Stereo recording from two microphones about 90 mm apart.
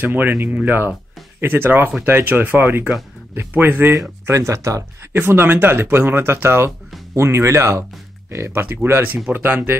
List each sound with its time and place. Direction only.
0.0 s speech: 20° right (ahead or behind)